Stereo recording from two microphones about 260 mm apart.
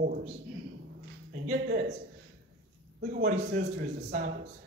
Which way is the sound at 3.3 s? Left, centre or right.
Right.